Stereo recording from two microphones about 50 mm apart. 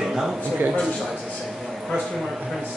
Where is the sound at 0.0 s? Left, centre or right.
Centre.